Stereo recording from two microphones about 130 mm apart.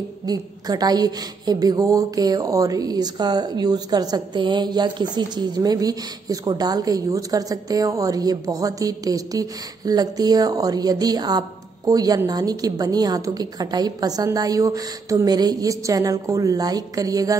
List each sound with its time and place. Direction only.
0.3 s a woman's voice: 30° right (ahead or behind)